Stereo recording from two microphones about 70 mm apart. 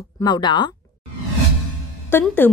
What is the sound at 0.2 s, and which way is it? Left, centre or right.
Speech, left.